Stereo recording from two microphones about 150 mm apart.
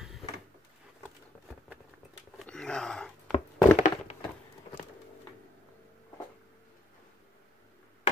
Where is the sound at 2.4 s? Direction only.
5° left (ahead or behind).